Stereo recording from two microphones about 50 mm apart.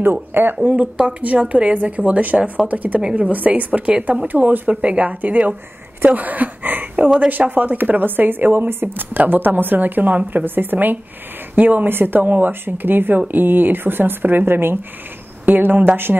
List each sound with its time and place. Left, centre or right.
0.0 s speech: right
0.9 s a woman's voice: right
4.3 s speech: right
15.4 s speech: right
16.1 s speech: centre